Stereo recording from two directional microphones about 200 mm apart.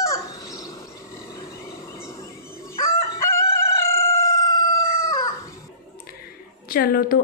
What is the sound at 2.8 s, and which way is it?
Crowing, 15° left (ahead or behind).